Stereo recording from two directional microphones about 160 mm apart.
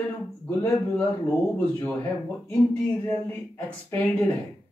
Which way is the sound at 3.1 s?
10° left (ahead or behind).